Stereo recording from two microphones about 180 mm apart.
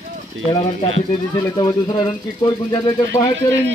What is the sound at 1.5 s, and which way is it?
Speech, 25° left (ahead or behind).